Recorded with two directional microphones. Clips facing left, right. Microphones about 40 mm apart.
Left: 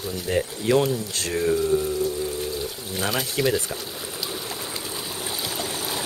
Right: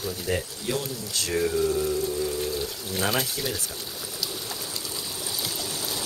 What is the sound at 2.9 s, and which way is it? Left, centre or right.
Speech, centre.